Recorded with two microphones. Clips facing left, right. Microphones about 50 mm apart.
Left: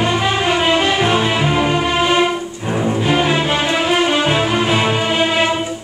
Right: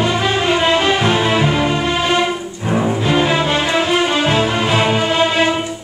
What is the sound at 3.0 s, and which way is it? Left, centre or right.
Music, centre.